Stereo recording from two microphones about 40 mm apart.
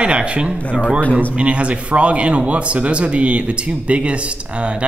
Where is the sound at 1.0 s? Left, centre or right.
Left.